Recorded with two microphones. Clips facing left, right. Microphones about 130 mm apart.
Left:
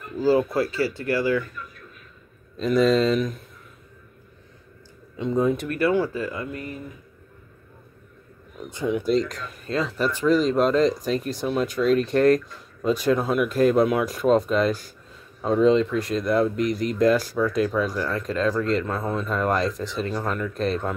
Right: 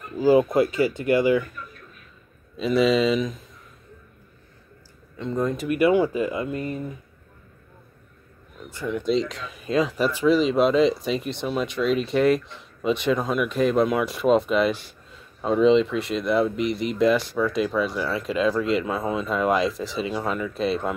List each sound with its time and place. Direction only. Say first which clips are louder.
0.2 s speech: right 3 dB; 15° right (ahead or behind)
2.5 s speech: left 1 dB; 5° right (ahead or behind)
5.1 s speech: left 3 dB; 10° left (ahead or behind)
5.7 s speech: right 3 dB; 15° right (ahead or behind)
8.5 s speech: left 3 dB; 15° left (ahead or behind)
9.0 s speech: left 1 dB; centre (ahead or behind)
9.7 s speech: right 3 dB; 15° right (ahead or behind)